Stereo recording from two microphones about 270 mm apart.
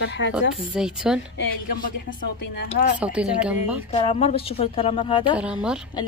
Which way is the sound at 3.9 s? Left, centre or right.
Left.